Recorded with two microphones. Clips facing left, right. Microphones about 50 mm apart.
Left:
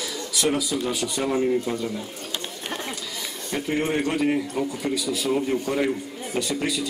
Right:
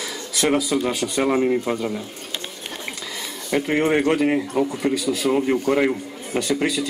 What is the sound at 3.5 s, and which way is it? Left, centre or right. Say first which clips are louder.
A man's voice: right 6 dB; right.